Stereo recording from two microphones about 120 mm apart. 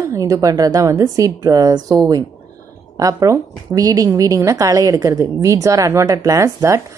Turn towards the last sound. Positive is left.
turn(degrees=-25)  # may be behind; listen again after turning